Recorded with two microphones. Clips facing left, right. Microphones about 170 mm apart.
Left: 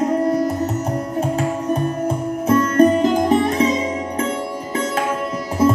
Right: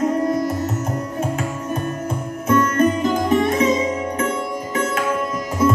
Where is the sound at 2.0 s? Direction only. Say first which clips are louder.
Left 4 dB; 35° left (ahead or behind).